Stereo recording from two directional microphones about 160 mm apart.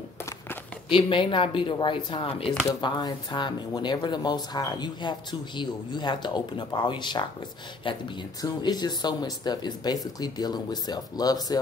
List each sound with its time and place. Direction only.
0.8 s speech: 30° left (ahead or behind)